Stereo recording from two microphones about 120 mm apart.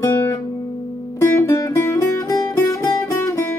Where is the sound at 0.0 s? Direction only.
25° left (ahead or behind).